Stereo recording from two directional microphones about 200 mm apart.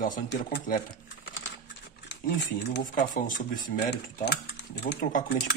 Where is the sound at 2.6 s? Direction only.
55° left (ahead or behind).